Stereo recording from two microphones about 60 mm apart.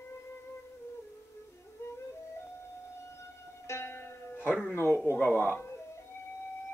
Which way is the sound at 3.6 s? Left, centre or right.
Left.